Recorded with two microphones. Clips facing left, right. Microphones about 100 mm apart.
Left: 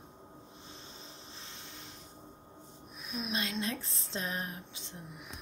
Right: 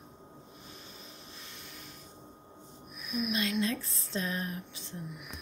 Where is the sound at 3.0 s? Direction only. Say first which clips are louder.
Right 4 dB; 30° left (ahead or behind).